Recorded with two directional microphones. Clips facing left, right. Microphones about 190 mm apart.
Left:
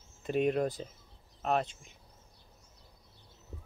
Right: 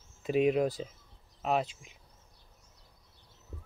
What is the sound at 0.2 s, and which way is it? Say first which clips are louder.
Speech: right 3 dB; 5° right (ahead or behind).